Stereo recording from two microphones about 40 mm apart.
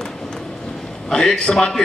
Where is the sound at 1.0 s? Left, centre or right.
Centre.